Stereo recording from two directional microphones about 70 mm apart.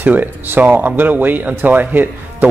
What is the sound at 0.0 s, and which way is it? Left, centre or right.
Speech, right.